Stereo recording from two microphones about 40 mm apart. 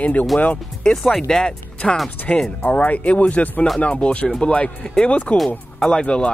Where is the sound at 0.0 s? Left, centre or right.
Left.